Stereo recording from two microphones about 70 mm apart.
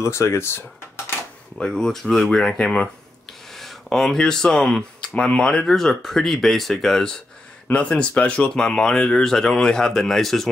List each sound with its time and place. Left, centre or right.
0.0 s speech: left
1.6 s speech: centre